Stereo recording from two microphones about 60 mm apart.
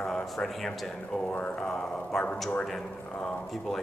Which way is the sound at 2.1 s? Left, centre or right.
Centre.